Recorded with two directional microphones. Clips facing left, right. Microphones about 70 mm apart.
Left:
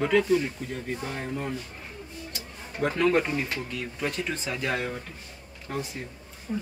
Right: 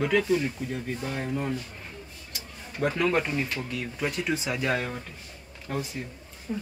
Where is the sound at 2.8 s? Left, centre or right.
Centre.